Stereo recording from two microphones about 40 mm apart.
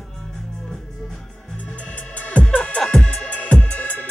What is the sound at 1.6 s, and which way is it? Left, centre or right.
Music, left.